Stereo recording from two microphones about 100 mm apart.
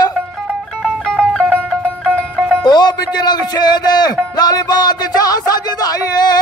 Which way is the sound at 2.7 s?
45° left (ahead or behind).